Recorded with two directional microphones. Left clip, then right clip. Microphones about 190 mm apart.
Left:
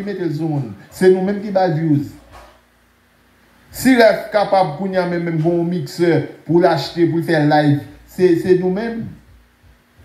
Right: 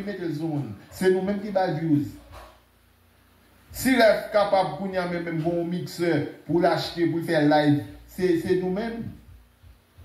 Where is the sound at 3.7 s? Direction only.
30° left (ahead or behind).